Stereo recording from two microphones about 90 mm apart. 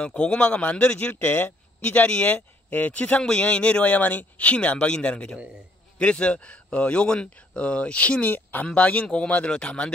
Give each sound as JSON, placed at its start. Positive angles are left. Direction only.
{"t": 0.0, "sound": "speech", "side_deg": 10}